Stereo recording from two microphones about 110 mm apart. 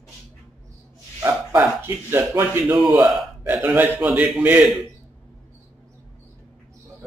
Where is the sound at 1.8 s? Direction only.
25° right (ahead or behind).